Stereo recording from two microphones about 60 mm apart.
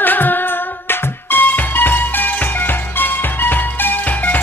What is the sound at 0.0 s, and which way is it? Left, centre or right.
Music, left.